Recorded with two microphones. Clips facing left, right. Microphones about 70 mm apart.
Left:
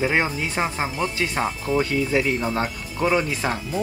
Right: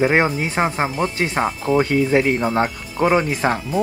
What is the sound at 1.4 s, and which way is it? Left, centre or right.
Speech, right.